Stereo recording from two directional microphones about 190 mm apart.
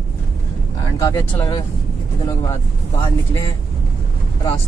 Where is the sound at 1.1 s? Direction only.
20° left (ahead or behind).